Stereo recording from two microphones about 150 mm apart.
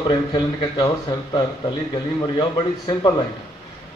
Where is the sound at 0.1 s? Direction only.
25° left (ahead or behind).